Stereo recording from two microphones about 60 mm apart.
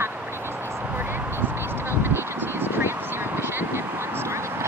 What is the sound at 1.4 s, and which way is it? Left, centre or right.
Vehicle, right.